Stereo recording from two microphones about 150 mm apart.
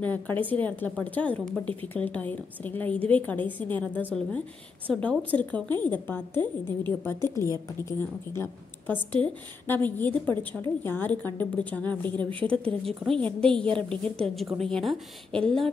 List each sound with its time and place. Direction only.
0.0 s a woman's voice: 10° left (ahead or behind)
7.8 s a woman's voice: 15° left (ahead or behind)